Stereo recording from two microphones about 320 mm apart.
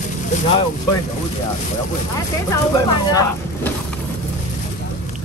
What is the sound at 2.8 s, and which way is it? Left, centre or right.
Speech, centre.